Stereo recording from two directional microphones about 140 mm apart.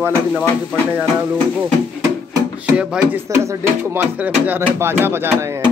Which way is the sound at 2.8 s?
10° right (ahead or behind).